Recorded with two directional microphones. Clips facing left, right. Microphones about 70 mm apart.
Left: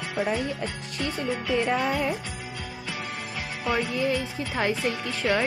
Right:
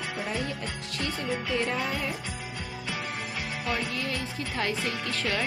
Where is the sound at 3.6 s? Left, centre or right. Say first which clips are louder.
Left 7 dB; left.